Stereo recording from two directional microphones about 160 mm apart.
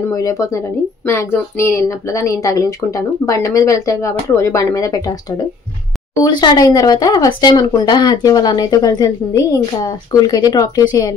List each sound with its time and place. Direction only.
0.0 s speech: 20° left (ahead or behind)
6.2 s speech: 25° left (ahead or behind)